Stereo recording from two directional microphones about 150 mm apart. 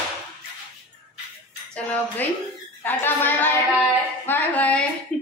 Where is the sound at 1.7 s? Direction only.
10° left (ahead or behind).